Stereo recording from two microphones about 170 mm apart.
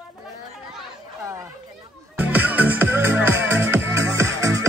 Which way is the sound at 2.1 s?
10° right (ahead or behind).